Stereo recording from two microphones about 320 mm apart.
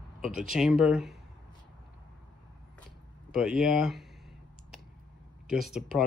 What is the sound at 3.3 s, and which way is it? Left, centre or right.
Speech, centre.